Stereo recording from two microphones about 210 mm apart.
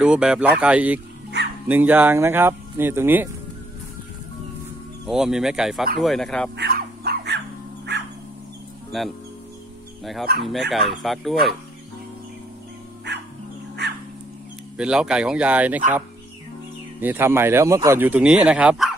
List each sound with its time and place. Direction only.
0.0 s speech: 5° right (ahead or behind)
5.0 s speech: centre (ahead or behind)
6.5 s dog: 50° right (ahead or behind)
8.9 s speech: centre (ahead or behind)
10.3 s speech: 45° right (ahead or behind)
10.7 s speech: centre (ahead or behind)
13.1 s dog: 55° right (ahead or behind)
14.8 s speech: 5° right (ahead or behind)
17.0 s speech: 10° right (ahead or behind)